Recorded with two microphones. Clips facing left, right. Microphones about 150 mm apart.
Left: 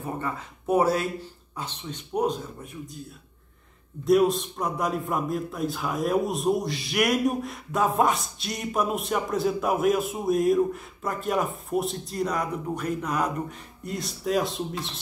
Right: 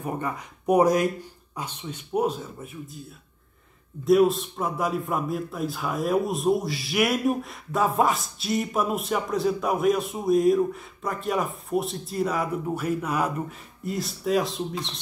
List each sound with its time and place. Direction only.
0.0 s a man's voice: 15° right (ahead or behind)
4.0 s a man's voice: centre (ahead or behind)